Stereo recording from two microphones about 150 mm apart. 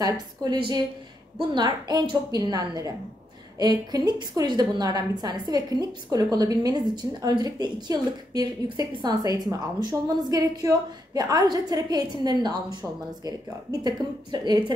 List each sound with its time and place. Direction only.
0.0 s a woman's voice: 25° right (ahead or behind)